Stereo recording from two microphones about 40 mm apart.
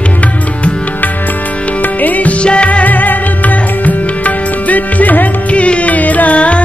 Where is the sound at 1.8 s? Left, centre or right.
Left.